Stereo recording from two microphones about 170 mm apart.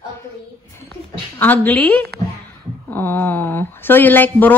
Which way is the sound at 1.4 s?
10° left (ahead or behind).